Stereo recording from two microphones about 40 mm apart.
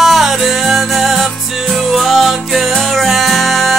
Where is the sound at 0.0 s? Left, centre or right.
Centre.